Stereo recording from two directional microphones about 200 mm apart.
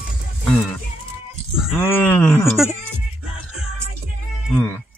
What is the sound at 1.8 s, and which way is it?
Speech, 10° left (ahead or behind).